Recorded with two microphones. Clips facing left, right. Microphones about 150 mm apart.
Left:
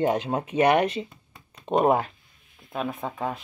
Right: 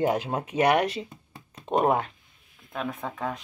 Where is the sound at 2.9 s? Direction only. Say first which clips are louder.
Left 2 dB; 20° left (ahead or behind).